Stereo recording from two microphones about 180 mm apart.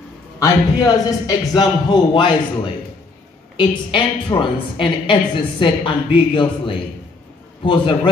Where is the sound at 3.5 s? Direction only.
25° left (ahead or behind).